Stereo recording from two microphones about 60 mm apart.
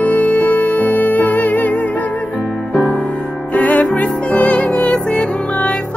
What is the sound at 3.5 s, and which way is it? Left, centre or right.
Music, left.